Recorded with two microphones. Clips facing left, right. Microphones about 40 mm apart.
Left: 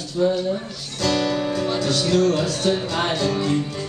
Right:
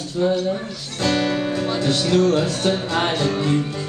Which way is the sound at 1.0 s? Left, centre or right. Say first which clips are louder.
Right 1 dB; right.